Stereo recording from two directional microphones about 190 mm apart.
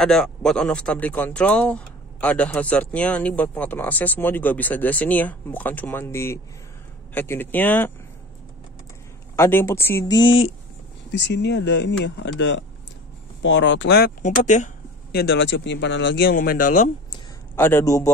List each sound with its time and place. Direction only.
0.0 s speech: 5° left (ahead or behind)
9.4 s speech: 10° left (ahead or behind)
11.1 s speech: 65° left (ahead or behind); by 14.7 s 40° left (ahead or behind)
15.1 s speech: 65° left (ahead or behind)
16.3 s speech: 50° left (ahead or behind)
17.6 s speech: 10° left (ahead or behind)